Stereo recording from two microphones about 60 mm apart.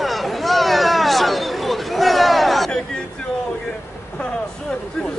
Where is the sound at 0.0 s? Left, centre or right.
Centre.